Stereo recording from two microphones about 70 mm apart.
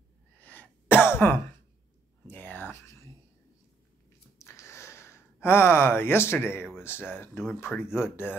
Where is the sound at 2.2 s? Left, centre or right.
Left.